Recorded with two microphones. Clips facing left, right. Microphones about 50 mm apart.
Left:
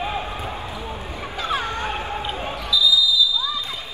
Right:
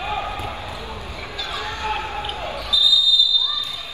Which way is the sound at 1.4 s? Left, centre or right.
Left.